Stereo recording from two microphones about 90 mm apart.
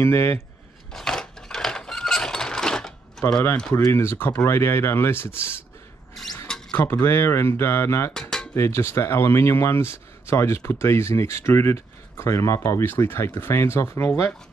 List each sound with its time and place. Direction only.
0.0 s speech: 30° left (ahead or behind)
0.9 s a sound: 5° left (ahead or behind)
3.7 s speech: 30° left (ahead or behind)
6.7 s speech: 25° left (ahead or behind)
8.1 s dishes: 5° left (ahead or behind)
8.5 s speech: 30° left (ahead or behind)